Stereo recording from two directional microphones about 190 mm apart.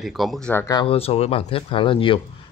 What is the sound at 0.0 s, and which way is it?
Speech, centre (ahead or behind).